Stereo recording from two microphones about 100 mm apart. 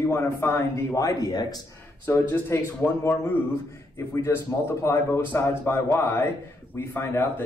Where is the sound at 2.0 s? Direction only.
25° left (ahead or behind).